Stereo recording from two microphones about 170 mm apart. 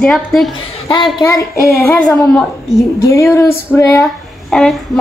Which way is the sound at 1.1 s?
20° left (ahead or behind).